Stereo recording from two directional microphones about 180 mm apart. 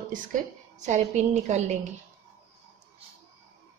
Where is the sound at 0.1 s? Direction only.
45° right (ahead or behind).